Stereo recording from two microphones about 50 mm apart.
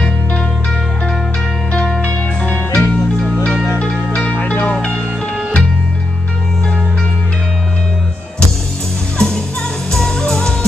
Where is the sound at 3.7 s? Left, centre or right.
Left.